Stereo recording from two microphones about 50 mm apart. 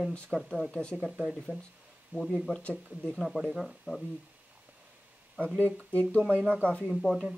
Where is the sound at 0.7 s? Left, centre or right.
Left.